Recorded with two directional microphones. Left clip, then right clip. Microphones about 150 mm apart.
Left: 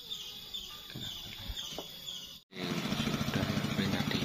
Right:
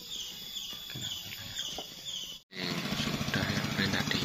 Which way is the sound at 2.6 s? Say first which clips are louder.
Right 2 dB; centre (ahead or behind).